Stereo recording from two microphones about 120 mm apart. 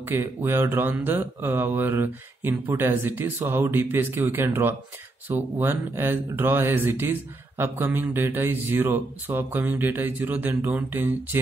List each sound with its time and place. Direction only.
0.0 s speech: 20° right (ahead or behind)